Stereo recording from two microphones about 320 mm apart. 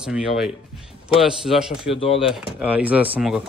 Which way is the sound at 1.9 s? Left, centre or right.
Centre.